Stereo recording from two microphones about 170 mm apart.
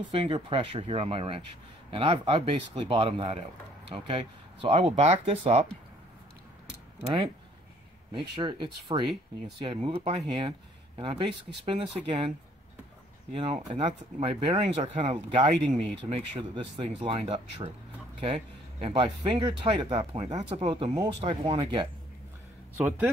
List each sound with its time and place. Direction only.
0.1 s speech: 35° right (ahead or behind)
8.1 s speech: 30° right (ahead or behind)
13.3 s speech: 35° right (ahead or behind)
22.8 s a man's voice: 10° right (ahead or behind)